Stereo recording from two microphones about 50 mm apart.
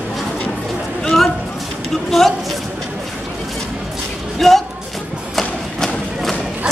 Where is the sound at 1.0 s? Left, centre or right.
Centre.